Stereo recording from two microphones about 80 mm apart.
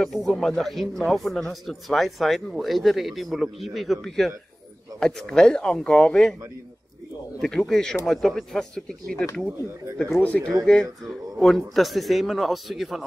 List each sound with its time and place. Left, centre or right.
0.0 s speech: centre
7.4 s speech: centre
10.2 s speech: centre